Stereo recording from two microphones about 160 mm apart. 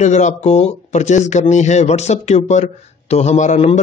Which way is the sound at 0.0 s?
45° left (ahead or behind).